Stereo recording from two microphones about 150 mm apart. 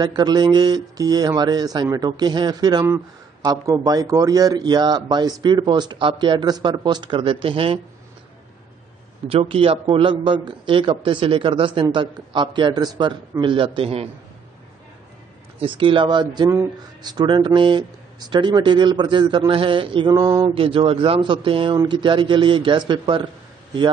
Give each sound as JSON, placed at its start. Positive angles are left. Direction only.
{"t": 0.0, "sound": "a man's voice", "side_deg": -30}
{"t": 9.3, "sound": "a man's voice", "side_deg": -40}
{"t": 15.6, "sound": "a man's voice", "side_deg": -35}
{"t": 20.5, "sound": "a man's voice", "side_deg": -35}